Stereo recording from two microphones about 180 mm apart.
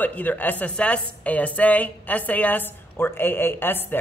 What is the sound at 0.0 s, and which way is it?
A woman's voice, 10° left (ahead or behind).